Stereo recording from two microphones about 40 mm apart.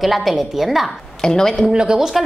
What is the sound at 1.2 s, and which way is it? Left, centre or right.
Speech, centre.